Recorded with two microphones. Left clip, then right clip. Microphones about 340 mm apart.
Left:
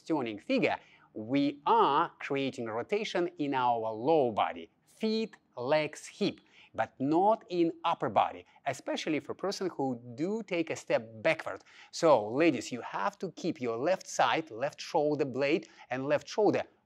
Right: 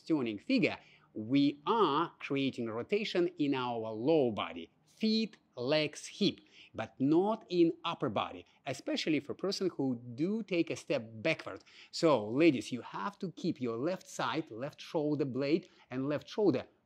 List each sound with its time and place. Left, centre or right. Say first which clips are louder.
0.1 s speech: left 2 dB; left
1.3 s speech: left 4 dB; left